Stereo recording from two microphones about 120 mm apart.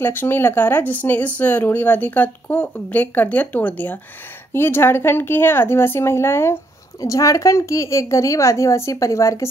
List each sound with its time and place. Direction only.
0.0 s a woman's voice: 15° left (ahead or behind)